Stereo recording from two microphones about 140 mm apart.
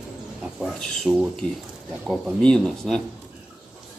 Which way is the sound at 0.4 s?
5° right (ahead or behind).